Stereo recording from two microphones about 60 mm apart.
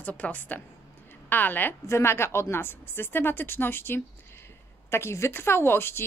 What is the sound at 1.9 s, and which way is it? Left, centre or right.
A woman's voice, left.